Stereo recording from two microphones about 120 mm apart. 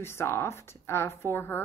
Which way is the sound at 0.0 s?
20° left (ahead or behind).